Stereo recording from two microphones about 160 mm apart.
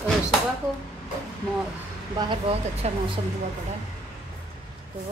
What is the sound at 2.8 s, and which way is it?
Speech, 45° right (ahead or behind).